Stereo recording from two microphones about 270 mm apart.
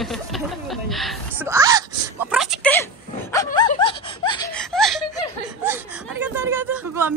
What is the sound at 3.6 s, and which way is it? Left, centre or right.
Laughter, centre.